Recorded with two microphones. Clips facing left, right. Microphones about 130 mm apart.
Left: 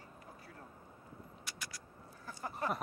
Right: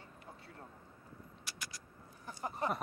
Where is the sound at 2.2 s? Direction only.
20° right (ahead or behind).